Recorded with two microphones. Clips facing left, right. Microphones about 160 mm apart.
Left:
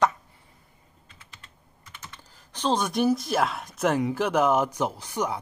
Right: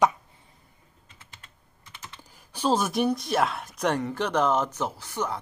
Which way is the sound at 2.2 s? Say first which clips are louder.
Right 1 dB; 10° right (ahead or behind).